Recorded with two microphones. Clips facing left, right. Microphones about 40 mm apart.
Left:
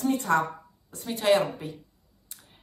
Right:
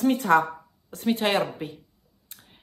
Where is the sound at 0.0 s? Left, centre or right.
Right.